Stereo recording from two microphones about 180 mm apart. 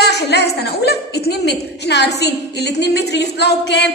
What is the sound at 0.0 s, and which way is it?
A woman's voice, 65° left (ahead or behind).